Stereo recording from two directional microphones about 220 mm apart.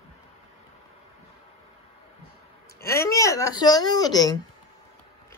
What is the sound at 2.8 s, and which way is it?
A woman's voice, 15° left (ahead or behind).